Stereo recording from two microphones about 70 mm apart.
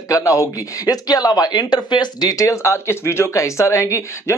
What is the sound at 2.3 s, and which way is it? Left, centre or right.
Speech, left.